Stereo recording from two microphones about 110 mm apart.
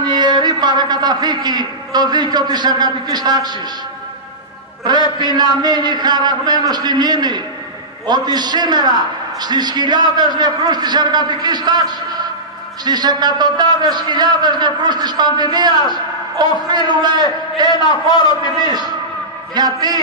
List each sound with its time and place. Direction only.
0.0 s a man's voice: 40° right (ahead or behind)
5.2 s a man's voice: 40° right (ahead or behind)
16.7 s a man's voice: 40° right (ahead or behind)
17.6 s a man's voice: 40° left (ahead or behind)
19.5 s a man's voice: 40° right (ahead or behind)